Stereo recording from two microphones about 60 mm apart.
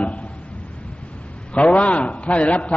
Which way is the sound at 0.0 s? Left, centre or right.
Left.